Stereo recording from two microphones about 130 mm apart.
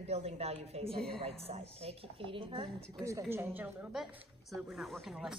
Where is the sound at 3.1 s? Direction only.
20° right (ahead or behind).